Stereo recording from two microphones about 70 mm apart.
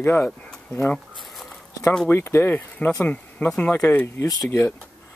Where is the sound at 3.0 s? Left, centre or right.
Centre.